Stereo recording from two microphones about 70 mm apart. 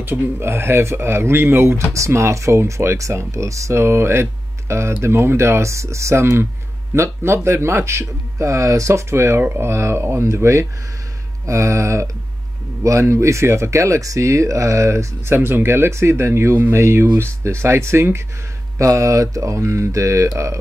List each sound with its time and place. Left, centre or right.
0.0 s speech: right
16.5 s speech: right
16.8 s speech: right